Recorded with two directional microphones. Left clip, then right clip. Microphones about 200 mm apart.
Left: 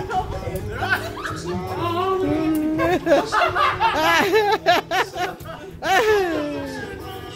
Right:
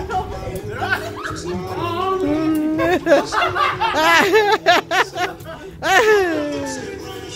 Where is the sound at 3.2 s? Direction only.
40° right (ahead or behind).